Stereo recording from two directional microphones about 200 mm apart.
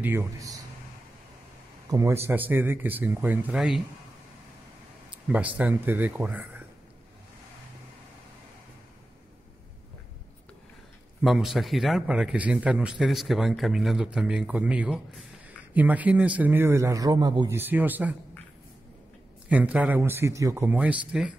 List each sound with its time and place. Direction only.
0.0 s a sound: 10° right (ahead or behind)
1.9 s a man's voice: 15° right (ahead or behind)
5.3 s a man's voice: 5° right (ahead or behind)
11.2 s a man's voice: centre (ahead or behind)
19.5 s a man's voice: 5° right (ahead or behind)